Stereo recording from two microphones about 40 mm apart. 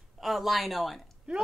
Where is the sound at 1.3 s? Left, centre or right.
Right.